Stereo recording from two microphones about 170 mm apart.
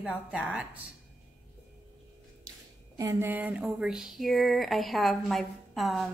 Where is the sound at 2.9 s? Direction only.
15° right (ahead or behind); by 6.1 s centre (ahead or behind).